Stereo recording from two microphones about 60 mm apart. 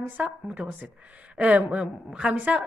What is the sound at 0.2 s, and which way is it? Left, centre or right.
A woman's voice, right.